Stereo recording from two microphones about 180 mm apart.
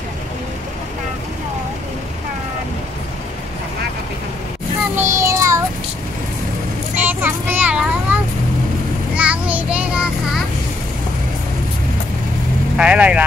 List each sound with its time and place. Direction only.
4.9 s child singing: 15° right (ahead or behind)
7.0 s child singing: 10° right (ahead or behind)
12.7 s speech: 5° right (ahead or behind)